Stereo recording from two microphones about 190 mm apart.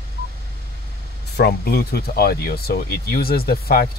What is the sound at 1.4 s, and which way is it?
Speech, 55° left (ahead or behind).